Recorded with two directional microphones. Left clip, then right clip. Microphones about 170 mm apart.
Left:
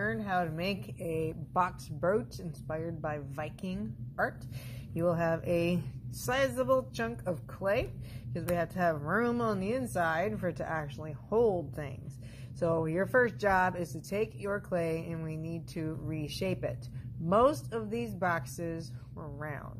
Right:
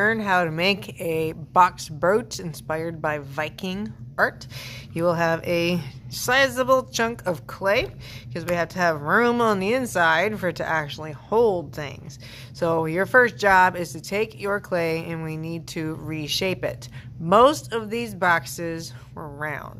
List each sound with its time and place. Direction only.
0.0 s speech: 35° right (ahead or behind); by 11.5 s 15° right (ahead or behind)
12.5 s speech: 15° right (ahead or behind)